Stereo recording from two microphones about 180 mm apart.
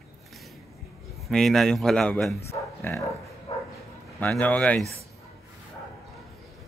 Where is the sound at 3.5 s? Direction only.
30° left (ahead or behind).